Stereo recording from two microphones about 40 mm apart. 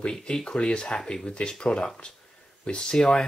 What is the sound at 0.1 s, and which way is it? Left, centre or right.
Speech, centre.